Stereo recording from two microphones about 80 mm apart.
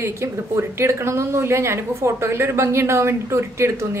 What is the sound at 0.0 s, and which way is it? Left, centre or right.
A woman's voice, right.